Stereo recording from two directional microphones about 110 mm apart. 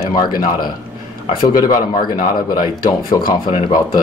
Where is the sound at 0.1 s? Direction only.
40° left (ahead or behind).